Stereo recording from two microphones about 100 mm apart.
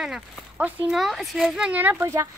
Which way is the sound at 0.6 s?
15° right (ahead or behind).